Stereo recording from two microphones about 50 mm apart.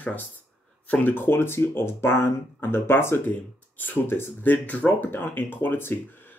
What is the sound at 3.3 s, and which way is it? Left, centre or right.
Speech, left.